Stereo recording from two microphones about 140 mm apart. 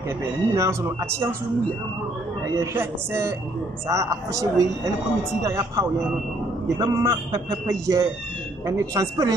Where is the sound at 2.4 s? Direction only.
20° right (ahead or behind).